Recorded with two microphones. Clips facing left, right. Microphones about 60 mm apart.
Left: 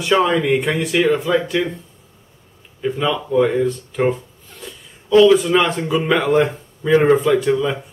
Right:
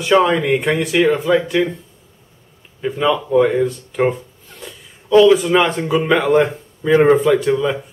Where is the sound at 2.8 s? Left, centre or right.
Centre.